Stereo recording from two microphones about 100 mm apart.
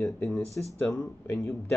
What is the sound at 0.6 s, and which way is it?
Speech, 20° left (ahead or behind).